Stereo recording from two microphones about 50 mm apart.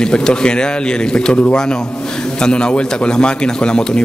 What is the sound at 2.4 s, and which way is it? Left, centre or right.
A man's voice, centre.